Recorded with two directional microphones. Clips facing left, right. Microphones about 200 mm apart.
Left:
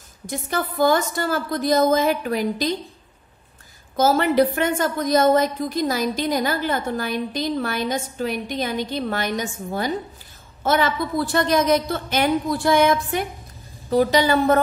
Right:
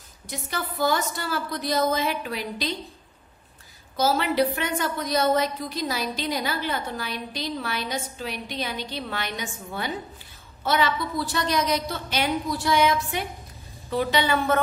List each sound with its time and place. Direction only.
0.3 s a woman's voice: 50° left (ahead or behind)
3.9 s a woman's voice: 50° left (ahead or behind)